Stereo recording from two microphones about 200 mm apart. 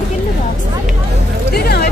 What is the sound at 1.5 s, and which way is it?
Speech, 50° left (ahead or behind).